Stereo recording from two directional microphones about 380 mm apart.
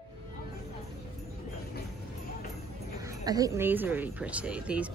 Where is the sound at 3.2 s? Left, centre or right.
Centre.